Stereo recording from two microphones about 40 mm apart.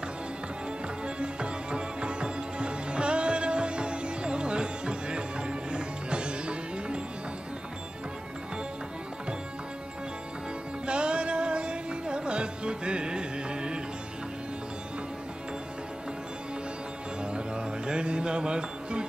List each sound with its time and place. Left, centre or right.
1.0 s music: right
10.9 s music: right
17.2 s music: right